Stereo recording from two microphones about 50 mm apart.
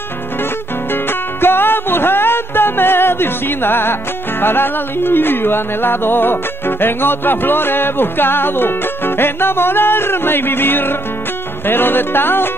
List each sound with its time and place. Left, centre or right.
0.9 s music: left